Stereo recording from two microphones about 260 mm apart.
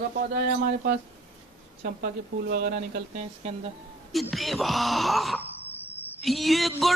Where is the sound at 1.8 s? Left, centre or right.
Right.